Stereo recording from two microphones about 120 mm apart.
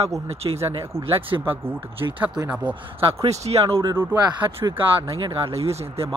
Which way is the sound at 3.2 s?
65° right (ahead or behind).